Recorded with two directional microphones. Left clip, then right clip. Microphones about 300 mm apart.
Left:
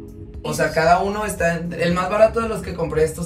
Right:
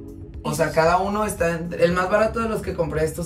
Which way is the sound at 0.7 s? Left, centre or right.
Centre.